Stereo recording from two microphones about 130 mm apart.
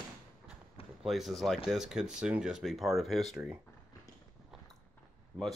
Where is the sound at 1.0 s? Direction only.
Centre (ahead or behind).